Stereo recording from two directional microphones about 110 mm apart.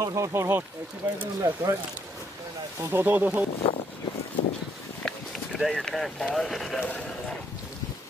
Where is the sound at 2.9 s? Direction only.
20° right (ahead or behind).